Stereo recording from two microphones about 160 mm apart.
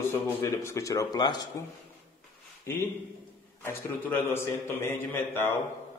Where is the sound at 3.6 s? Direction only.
15° left (ahead or behind).